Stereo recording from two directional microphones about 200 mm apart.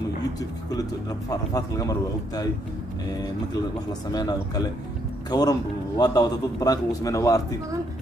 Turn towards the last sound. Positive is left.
turn(degrees=15)  # may be behind; listen again after turning